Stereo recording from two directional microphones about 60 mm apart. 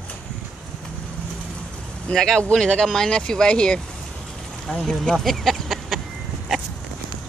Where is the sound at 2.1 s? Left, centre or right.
Centre.